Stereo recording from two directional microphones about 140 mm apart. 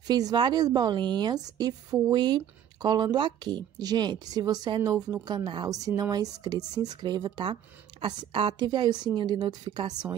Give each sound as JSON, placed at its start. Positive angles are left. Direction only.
{"t": 0.0, "sound": "a woman's voice", "side_deg": -30}